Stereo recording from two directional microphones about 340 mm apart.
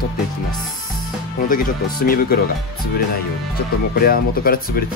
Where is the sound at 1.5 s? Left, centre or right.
Left.